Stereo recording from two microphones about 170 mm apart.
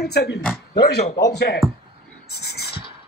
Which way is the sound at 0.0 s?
75° left (ahead or behind).